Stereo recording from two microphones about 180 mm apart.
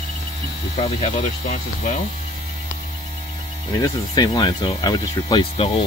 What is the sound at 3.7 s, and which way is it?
Speech, 20° left (ahead or behind).